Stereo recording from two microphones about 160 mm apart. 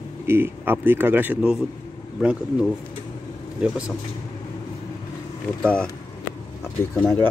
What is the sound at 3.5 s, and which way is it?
Speech, 5° right (ahead or behind).